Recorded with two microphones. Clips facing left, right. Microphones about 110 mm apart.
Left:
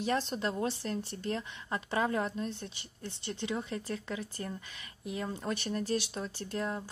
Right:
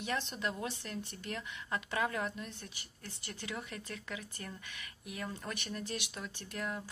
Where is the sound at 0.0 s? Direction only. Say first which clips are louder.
Left 5 dB; 35° left (ahead or behind).